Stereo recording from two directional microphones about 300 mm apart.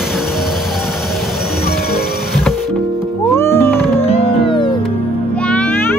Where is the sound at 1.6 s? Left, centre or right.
Left.